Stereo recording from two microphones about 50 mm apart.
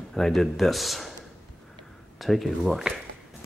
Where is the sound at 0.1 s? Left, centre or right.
Centre.